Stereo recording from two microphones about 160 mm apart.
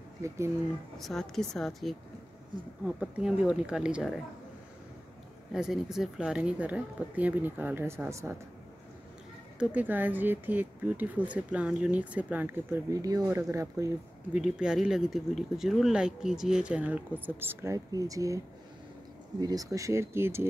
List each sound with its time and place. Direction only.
0.9 s speech: centre (ahead or behind)
3.0 s speech: 5° right (ahead or behind)
5.5 s speech: 5° right (ahead or behind)
9.6 s speech: 10° right (ahead or behind)
14.3 s speech: 5° right (ahead or behind); by 18.4 s 20° right (ahead or behind)
19.4 s speech: 20° right (ahead or behind)